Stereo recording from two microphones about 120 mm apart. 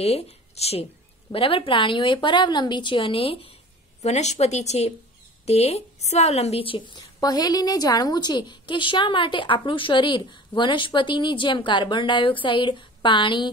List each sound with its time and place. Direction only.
0.0 s a woman's voice: 60° left (ahead or behind)
4.0 s a woman's voice: 70° left (ahead or behind); by 6.8 s 55° left (ahead or behind)
7.2 s a woman's voice: 35° left (ahead or behind)